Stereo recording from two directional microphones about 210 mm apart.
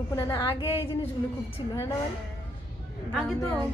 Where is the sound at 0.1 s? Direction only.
20° left (ahead or behind).